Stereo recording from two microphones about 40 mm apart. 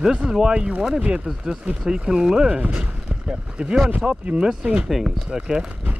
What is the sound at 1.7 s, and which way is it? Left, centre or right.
Speech, centre.